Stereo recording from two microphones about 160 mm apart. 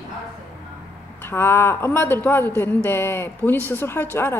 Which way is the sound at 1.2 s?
15° left (ahead or behind).